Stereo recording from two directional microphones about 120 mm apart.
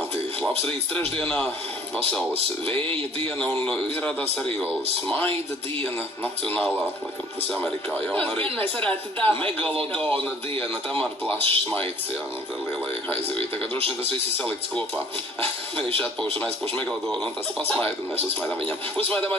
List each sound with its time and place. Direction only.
1.2 s speech: 10° left (ahead or behind)
2.6 s a man's voice: 45° right (ahead or behind)
3.6 s speech: 10° left (ahead or behind)
7.6 s speech: 10° left (ahead or behind)
11.0 s a man's voice: 50° right (ahead or behind)
13.1 s a man's voice: 50° right (ahead or behind)
16.7 s speech: 10° left (ahead or behind)